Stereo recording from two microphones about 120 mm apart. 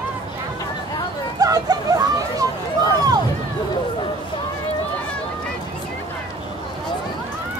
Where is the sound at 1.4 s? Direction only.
30° right (ahead or behind).